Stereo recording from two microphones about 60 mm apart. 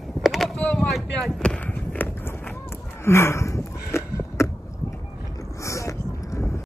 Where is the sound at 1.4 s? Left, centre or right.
Centre.